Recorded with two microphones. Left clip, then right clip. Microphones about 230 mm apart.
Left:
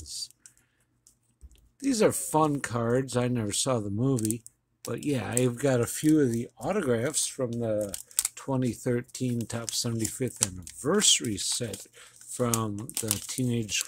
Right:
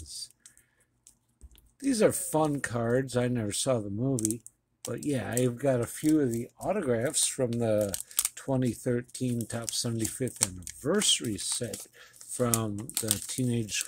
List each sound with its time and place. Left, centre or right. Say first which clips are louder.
0.0 s a sound: left 4 dB; centre
1.8 s speech: left 1 dB; centre
4.8 s speech: left 1 dB; centre
7.2 s speech: right 2 dB; centre
8.1 s speech: even; centre